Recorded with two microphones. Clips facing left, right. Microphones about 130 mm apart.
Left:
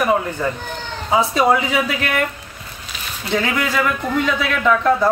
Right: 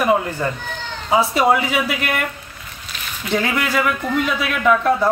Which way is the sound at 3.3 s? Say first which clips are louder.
Even; 5° right (ahead or behind).